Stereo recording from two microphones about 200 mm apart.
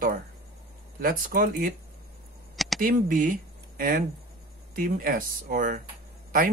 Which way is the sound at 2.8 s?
45° right (ahead or behind).